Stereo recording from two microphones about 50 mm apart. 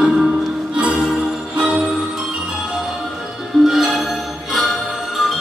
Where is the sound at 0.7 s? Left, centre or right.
Right.